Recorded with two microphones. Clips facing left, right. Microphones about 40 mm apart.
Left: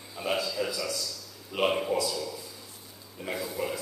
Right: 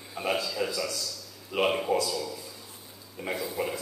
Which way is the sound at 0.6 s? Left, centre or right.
Centre.